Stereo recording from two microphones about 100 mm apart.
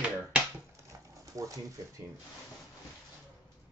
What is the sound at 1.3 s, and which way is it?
Speech, 35° right (ahead or behind).